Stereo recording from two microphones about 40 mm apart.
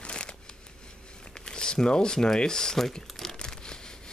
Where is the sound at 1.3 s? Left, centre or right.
Left.